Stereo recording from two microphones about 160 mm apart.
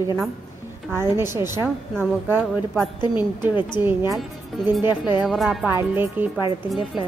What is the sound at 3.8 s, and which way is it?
Speech, 15° right (ahead or behind).